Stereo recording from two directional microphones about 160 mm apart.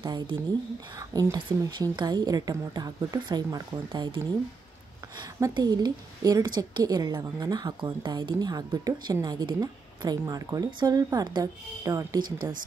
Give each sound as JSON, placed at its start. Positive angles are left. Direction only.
{"t": 0.0, "sound": "a woman's voice", "side_deg": -30}